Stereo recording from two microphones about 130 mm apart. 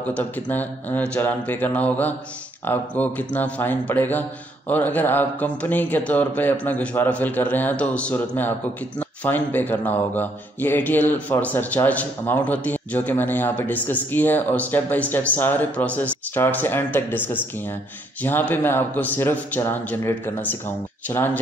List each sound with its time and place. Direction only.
0.1 s speech: 15° left (ahead or behind)